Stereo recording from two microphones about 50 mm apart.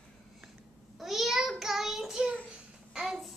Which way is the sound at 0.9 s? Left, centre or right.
Centre.